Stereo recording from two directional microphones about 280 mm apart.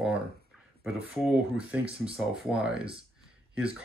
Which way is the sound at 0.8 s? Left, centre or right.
Centre.